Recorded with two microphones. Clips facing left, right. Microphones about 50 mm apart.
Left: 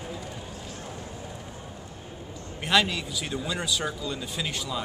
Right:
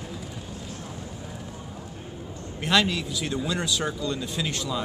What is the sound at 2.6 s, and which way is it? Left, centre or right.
Speech, centre.